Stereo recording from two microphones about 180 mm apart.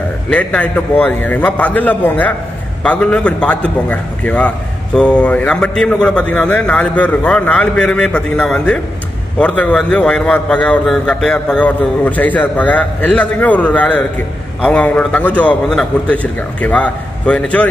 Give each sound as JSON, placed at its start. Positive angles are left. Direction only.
{"t": 0.3, "sound": "a man's voice", "side_deg": 5}